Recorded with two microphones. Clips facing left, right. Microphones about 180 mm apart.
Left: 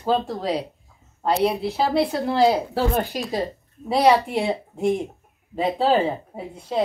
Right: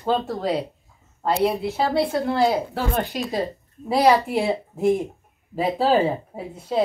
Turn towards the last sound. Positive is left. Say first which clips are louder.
# right 1 dB
turn(degrees=0)  # may be behind; listen again after turning